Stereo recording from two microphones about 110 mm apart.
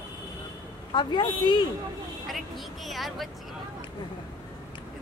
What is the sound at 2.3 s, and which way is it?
A woman's voice, centre (ahead or behind).